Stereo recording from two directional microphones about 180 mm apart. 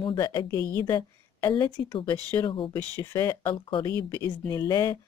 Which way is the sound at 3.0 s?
15° left (ahead or behind).